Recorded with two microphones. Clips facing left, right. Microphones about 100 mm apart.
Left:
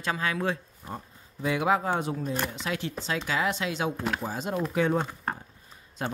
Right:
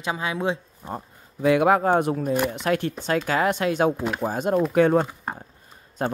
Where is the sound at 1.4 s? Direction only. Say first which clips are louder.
Right 7 dB; 60° right (ahead or behind).